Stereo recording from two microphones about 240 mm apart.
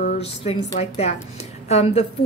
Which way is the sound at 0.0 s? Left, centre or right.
Left.